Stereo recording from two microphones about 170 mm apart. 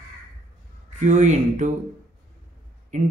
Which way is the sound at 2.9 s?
45° right (ahead or behind).